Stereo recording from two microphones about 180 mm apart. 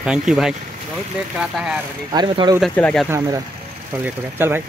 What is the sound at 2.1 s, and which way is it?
Speech, 25° right (ahead or behind).